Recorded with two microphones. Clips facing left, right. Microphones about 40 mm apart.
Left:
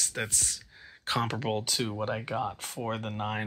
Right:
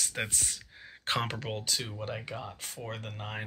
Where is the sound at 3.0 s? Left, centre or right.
Left.